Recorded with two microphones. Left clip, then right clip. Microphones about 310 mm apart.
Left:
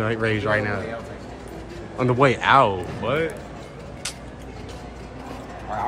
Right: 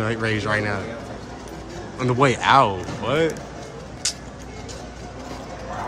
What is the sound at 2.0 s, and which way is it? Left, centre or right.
Speech, centre.